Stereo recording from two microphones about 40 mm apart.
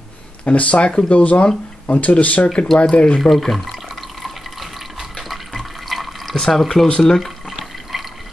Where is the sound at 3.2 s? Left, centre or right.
Centre.